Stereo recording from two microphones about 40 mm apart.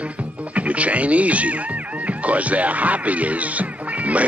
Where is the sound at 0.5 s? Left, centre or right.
Right.